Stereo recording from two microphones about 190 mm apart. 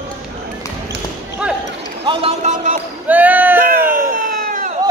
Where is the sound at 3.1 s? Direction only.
10° right (ahead or behind).